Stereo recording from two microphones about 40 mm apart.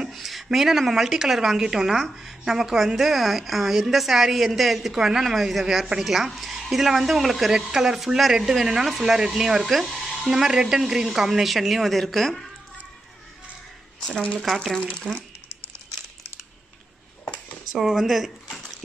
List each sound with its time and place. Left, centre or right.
0.0 s a woman's voice: centre
14.4 s a woman's voice: centre
14.8 s speech: left
17.2 s a sound: left
17.7 s a woman's voice: centre